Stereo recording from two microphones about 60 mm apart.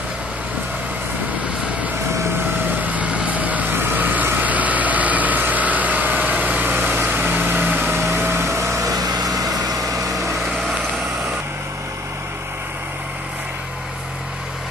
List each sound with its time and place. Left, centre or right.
2.8 s vehicle: right
8.1 s a sound: right
8.8 s vehicle: right
9.7 s vehicle: right